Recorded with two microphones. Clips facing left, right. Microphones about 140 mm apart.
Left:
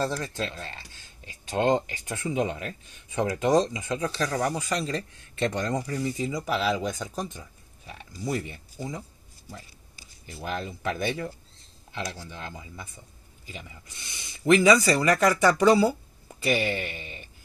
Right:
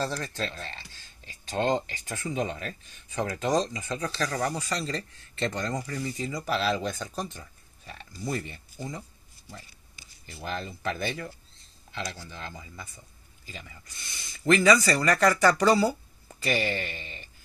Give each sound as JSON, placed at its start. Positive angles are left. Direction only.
{"t": 0.0, "sound": "speech", "side_deg": 15}
{"t": 10.3, "sound": "speech", "side_deg": 10}
{"t": 15.0, "sound": "speech", "side_deg": 5}
{"t": 15.3, "sound": "speech", "side_deg": 20}